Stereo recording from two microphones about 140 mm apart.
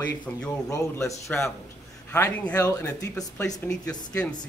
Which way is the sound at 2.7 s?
20° left (ahead or behind).